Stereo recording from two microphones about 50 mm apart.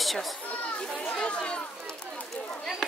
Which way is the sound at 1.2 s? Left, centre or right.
Left.